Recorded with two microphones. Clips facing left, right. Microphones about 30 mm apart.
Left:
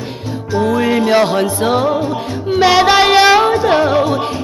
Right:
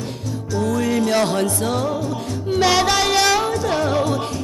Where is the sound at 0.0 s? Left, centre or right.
Left.